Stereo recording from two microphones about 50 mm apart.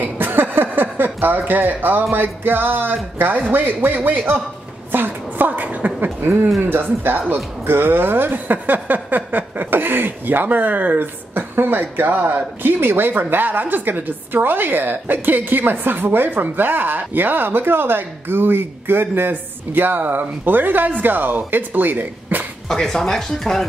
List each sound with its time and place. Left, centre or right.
0.0 s a sound: right
2.1 s a woman's voice: right
22.7 s speech: centre